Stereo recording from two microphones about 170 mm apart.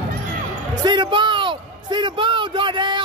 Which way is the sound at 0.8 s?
25° right (ahead or behind).